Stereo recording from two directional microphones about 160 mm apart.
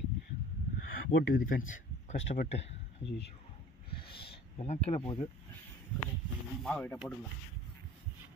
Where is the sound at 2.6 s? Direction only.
40° left (ahead or behind).